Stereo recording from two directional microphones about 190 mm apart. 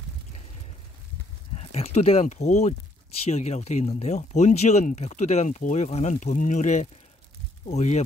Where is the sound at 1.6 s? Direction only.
35° left (ahead or behind).